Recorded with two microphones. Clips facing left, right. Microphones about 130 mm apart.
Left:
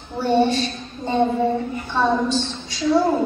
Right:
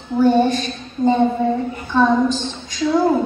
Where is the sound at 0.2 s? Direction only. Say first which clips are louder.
Right 3 dB; 45° right (ahead or behind).